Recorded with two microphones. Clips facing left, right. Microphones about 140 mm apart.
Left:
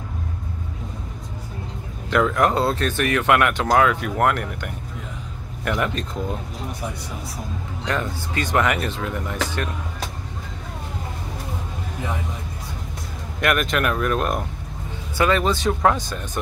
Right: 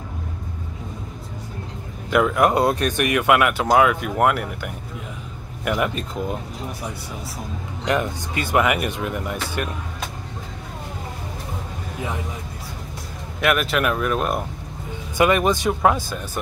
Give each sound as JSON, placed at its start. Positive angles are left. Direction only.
{"t": 2.0, "sound": "speech", "side_deg": -10}
{"t": 7.8, "sound": "speech", "side_deg": -15}
{"t": 13.4, "sound": "speech", "side_deg": -5}
{"t": 15.1, "sound": "speech", "side_deg": -15}